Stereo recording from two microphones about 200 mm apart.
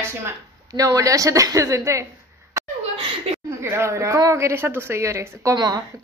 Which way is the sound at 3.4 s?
15° right (ahead or behind).